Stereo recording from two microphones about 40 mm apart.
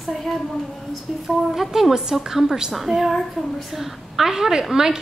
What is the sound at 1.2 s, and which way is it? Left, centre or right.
A woman's voice, centre.